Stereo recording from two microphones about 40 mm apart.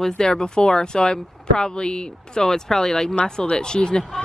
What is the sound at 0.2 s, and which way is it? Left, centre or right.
A woman's voice, centre.